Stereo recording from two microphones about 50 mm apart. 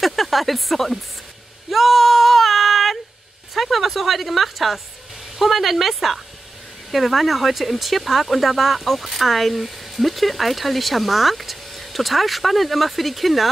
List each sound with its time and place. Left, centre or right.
0.0 s speech: centre
1.7 s female singing: centre
3.5 s speech: centre